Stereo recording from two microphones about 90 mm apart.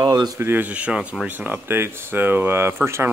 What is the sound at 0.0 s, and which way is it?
Speech, 50° right (ahead or behind).